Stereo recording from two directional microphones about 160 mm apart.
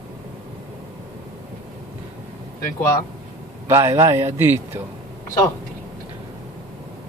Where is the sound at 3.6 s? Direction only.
15° right (ahead or behind).